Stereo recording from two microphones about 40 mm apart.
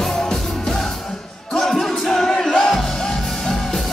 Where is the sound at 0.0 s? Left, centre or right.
Centre.